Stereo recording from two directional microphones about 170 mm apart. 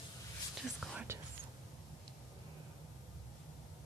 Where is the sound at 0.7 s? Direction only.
Centre (ahead or behind).